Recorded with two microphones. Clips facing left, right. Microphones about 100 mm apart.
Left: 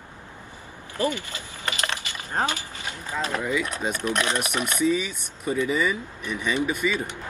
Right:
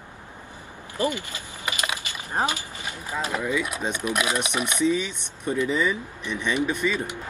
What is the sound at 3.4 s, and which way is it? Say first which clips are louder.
Speech: right 1 dB; centre (ahead or behind).